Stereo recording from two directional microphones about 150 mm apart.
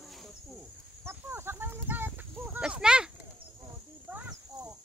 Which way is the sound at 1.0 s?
15° right (ahead or behind).